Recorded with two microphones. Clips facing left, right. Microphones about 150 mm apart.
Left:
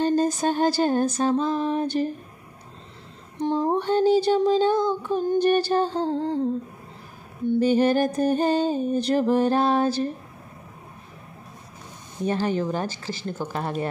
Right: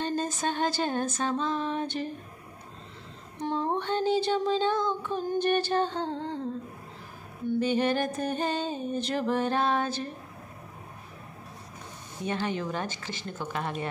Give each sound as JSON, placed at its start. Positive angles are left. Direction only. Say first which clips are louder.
{"t": 0.0, "sound": "music", "louder": "left 8 dB", "side_deg": 40}
{"t": 3.3, "sound": "music", "louder": "left 6 dB", "side_deg": 35}
{"t": 7.4, "sound": "music", "louder": "left 6 dB", "side_deg": 35}
{"t": 12.3, "sound": "music", "louder": "left 6 dB", "side_deg": 35}